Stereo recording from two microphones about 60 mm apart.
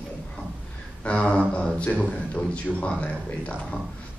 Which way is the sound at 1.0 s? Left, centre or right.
Left.